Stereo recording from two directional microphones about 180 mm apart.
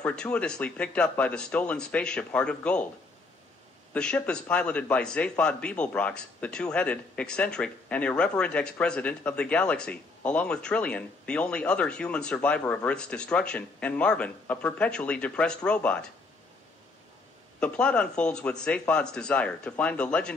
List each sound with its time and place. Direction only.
0.0 s a man's voice: 5° left (ahead or behind)
3.9 s a man's voice: 5° left (ahead or behind)
17.6 s a man's voice: 5° left (ahead or behind)